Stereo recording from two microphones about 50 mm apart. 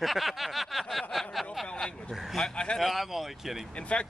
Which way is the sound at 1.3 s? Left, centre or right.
Centre.